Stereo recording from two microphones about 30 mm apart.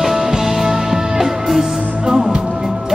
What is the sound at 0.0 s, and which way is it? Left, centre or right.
Music, centre.